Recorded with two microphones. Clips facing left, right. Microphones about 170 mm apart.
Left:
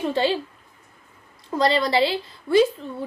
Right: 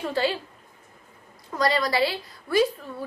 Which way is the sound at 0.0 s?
25° left (ahead or behind).